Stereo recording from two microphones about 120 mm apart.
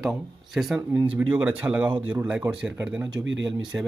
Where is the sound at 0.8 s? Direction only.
20° right (ahead or behind).